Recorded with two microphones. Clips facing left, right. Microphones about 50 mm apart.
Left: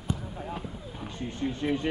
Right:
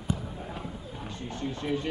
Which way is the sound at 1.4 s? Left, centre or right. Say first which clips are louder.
Left 2 dB; left.